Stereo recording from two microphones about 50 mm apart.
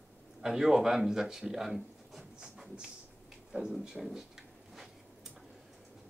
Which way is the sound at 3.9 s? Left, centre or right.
Centre.